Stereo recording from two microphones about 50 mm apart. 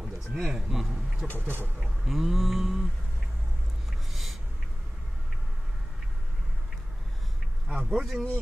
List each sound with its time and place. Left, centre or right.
0.0 s speech: centre
1.2 s speech: left
2.0 s mantra: centre
4.1 s a sound: centre
7.9 s mantra: centre